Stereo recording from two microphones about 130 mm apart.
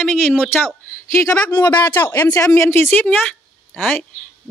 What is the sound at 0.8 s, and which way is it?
Speech, 15° left (ahead or behind).